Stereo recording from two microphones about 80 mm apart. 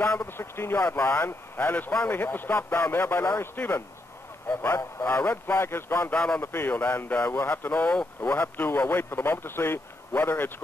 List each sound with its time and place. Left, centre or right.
0.0 s speech: left
6.1 s a man's voice: centre
6.4 s speech: left